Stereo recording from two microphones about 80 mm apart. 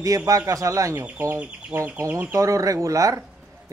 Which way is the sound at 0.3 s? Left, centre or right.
Right.